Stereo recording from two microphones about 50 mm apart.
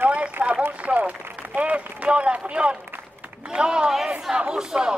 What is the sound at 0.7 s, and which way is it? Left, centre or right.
A man's voice, right.